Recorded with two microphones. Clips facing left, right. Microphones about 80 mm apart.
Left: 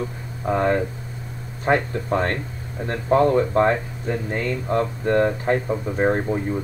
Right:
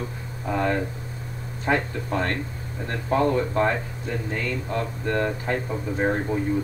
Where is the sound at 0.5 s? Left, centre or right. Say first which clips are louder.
Left 4 dB; left.